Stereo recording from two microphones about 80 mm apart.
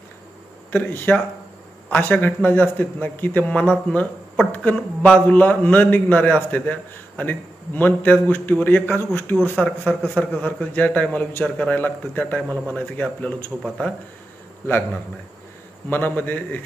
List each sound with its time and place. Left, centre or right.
0.7 s a man's voice: left
15.9 s a man's voice: left